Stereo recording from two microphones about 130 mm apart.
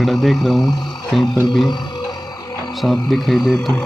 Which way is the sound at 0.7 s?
35° left (ahead or behind).